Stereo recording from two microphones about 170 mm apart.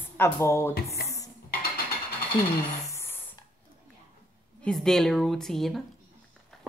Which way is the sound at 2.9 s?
15° left (ahead or behind).